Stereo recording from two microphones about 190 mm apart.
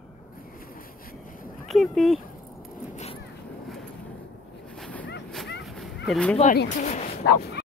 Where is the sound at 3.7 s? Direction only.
Centre (ahead or behind).